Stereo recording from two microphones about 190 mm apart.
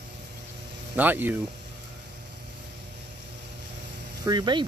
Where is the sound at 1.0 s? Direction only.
10° right (ahead or behind).